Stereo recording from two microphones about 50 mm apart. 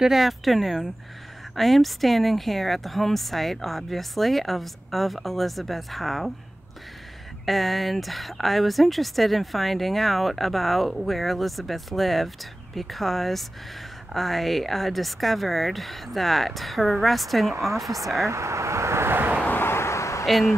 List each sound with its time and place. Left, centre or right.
0.0 s speech: centre
7.4 s speech: centre
18.3 s speech: right
19.4 s vehicle: left